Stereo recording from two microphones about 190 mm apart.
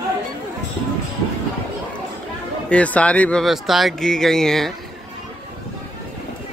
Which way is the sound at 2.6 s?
5° left (ahead or behind).